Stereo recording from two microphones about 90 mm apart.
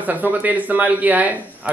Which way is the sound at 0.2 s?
20° right (ahead or behind).